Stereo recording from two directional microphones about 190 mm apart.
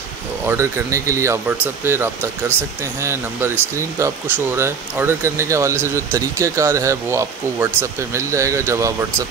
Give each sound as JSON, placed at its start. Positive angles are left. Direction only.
{"t": 0.5, "sound": "speech", "side_deg": -15}